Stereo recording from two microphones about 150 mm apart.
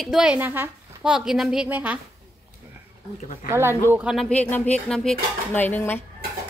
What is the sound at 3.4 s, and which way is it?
Speech, 15° right (ahead or behind).